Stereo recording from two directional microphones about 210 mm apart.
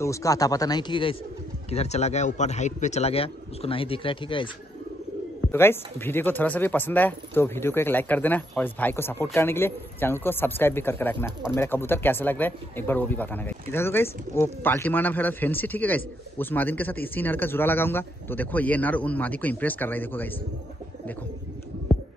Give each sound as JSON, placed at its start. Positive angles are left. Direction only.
{"t": 0.0, "sound": "a man's voice", "side_deg": 15}
{"t": 5.5, "sound": "speech", "side_deg": 10}